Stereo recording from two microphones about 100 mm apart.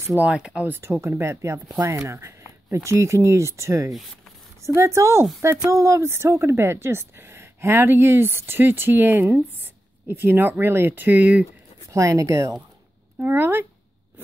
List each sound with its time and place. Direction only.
0.0 s speech: 25° right (ahead or behind)
0.3 s speech: 10° right (ahead or behind)
0.7 s a woman's voice: 25° right (ahead or behind)
11.9 s speech: 30° right (ahead or behind)
13.2 s a woman's voice: 20° right (ahead or behind)